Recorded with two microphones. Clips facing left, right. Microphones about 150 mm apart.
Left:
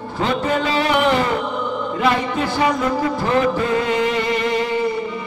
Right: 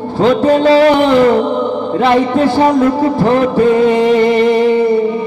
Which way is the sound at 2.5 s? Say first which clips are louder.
Right 5 dB; 35° right (ahead or behind).